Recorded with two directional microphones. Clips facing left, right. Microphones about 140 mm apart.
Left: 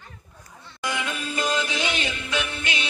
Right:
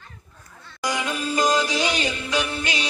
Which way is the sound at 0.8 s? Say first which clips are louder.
Right 3 dB; 40° right (ahead or behind).